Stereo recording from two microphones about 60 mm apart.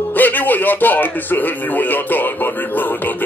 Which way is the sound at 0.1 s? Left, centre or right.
Left.